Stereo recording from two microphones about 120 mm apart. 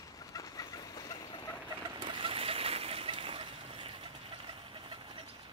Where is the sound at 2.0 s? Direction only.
45° right (ahead or behind).